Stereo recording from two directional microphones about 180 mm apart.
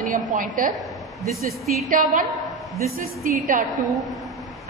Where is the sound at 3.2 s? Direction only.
45° right (ahead or behind).